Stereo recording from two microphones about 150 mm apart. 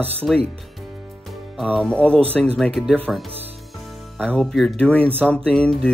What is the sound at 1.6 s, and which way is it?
Speech, 5° left (ahead or behind).